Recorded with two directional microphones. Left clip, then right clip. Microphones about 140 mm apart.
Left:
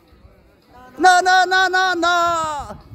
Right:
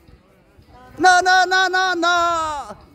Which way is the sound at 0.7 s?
30° left (ahead or behind).